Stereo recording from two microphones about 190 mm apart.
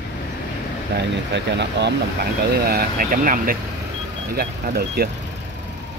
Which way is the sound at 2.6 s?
50° right (ahead or behind).